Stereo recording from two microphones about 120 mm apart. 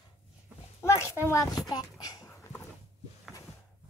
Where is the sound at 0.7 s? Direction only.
25° left (ahead or behind).